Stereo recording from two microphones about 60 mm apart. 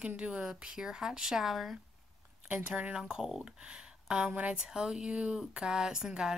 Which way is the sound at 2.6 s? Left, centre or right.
Right.